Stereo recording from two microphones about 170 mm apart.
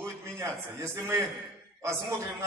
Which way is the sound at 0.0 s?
15° right (ahead or behind).